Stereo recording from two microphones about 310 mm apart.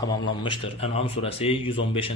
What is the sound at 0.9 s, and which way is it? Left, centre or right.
Speech, centre.